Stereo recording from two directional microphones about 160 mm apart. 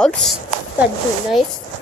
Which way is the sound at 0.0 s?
Centre (ahead or behind).